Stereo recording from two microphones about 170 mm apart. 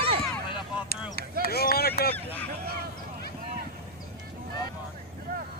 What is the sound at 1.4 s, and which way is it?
Speech, 65° left (ahead or behind).